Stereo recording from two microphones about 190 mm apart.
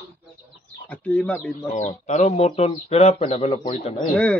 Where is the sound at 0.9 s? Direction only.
5° left (ahead or behind).